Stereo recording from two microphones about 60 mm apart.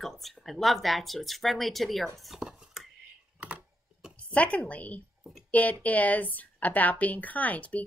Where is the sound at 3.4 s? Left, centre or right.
Right.